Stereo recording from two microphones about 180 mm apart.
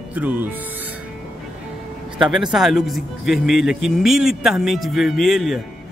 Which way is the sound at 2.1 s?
Centre (ahead or behind).